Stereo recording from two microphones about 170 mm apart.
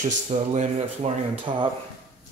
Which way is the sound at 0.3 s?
45° right (ahead or behind).